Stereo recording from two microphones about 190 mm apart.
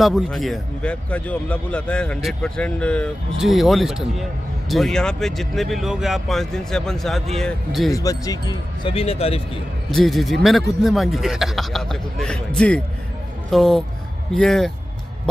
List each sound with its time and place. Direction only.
0.0 s a man's voice: centre (ahead or behind)
7.9 s speech: 20° left (ahead or behind)
9.8 s a man's voice: centre (ahead or behind)